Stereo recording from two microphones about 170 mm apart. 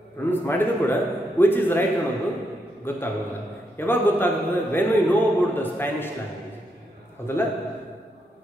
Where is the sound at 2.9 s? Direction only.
10° left (ahead or behind).